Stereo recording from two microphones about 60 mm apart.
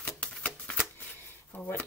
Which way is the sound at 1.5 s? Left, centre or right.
Left.